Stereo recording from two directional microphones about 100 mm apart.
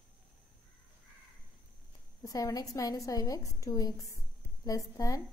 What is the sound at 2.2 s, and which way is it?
A woman's voice, 35° left (ahead or behind).